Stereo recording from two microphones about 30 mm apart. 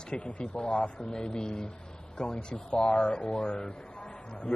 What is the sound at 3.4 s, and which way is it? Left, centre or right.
Speech, left.